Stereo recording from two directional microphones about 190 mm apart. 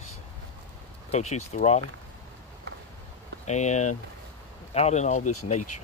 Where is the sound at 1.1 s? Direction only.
35° left (ahead or behind).